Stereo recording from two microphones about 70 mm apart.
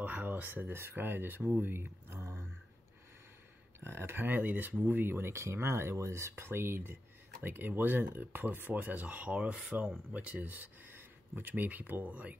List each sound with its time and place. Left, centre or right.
0.0 s speech: right
3.8 s speech: right